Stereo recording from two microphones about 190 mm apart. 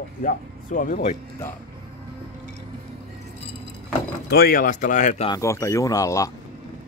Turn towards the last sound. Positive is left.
turn(degrees=15)  # may be behind; listen again after turning